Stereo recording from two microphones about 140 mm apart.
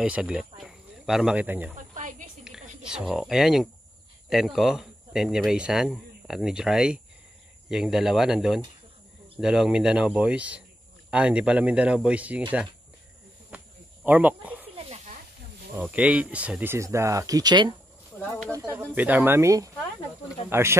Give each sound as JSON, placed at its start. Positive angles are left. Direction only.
{"t": 0.0, "sound": "speech", "side_deg": -5}
{"t": 2.0, "sound": "a sound", "side_deg": -65}
{"t": 2.9, "sound": "speech", "side_deg": -5}
{"t": 13.5, "sound": "cricket", "side_deg": -10}
{"t": 14.0, "sound": "speech", "side_deg": -10}
{"t": 15.8, "sound": "speech", "side_deg": -10}
{"t": 18.1, "sound": "snake", "side_deg": 15}
{"t": 18.5, "sound": "speech", "side_deg": -20}
{"t": 18.9, "sound": "speech", "side_deg": -10}